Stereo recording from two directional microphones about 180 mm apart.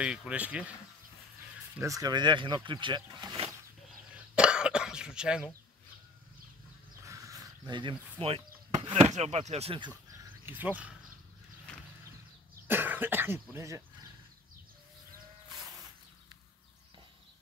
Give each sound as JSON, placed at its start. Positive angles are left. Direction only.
{"t": 0.0, "sound": "speech", "side_deg": -5}
{"t": 1.8, "sound": "speech", "side_deg": -20}
{"t": 4.4, "sound": "cough", "side_deg": -5}
{"t": 7.1, "sound": "speech", "side_deg": -20}
{"t": 10.4, "sound": "speech", "side_deg": -10}
{"t": 12.6, "sound": "cough", "side_deg": -10}